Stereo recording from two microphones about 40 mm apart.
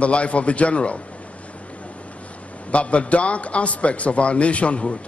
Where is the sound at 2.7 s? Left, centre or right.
Left.